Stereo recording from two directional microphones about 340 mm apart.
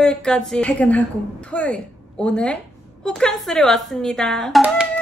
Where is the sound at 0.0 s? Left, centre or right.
Centre.